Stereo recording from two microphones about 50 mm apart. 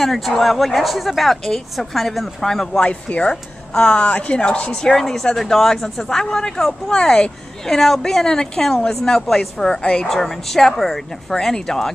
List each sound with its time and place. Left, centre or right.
0.0 s speech: centre
2.8 s speech: left
10.0 s speech: centre